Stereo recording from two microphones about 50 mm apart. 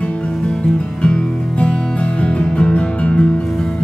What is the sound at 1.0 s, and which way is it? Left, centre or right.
Music, centre.